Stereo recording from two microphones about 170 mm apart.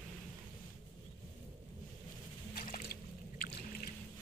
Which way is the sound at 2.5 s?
55° left (ahead or behind).